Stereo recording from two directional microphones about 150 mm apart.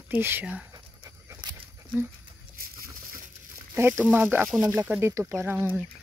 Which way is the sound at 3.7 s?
15° right (ahead or behind).